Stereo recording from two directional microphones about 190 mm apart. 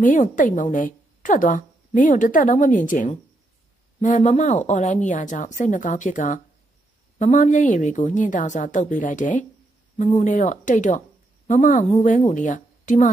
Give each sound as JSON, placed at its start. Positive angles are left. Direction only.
{"t": 0.0, "sound": "a woman's voice", "side_deg": 45}